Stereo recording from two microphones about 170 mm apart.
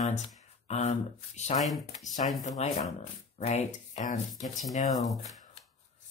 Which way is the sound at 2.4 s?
40° left (ahead or behind).